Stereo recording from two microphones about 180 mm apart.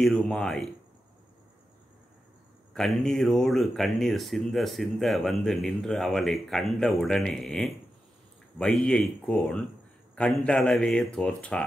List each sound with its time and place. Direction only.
0.0 s speech: 5° left (ahead or behind)
2.7 s speech: 5° left (ahead or behind)